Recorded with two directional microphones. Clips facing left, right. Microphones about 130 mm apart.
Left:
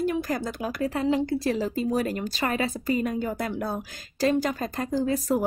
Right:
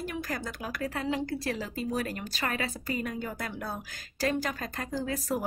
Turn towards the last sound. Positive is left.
turn(degrees=25)  # may be behind; listen again after turning